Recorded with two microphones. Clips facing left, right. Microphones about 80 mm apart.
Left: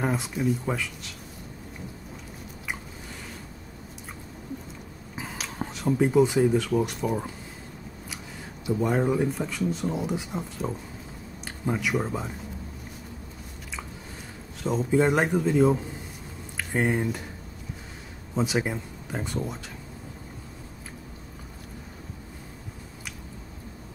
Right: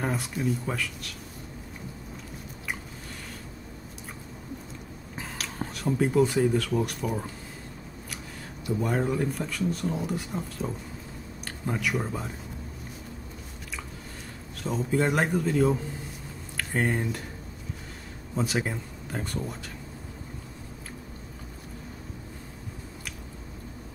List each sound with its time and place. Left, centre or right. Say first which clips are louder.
0.0 s speech: left 2 dB; centre
5.1 s speech: left 1 dB; centre
8.6 s speech: left 3 dB; centre
14.6 s speech: left 4 dB; centre
18.3 s speech: left 2 dB; centre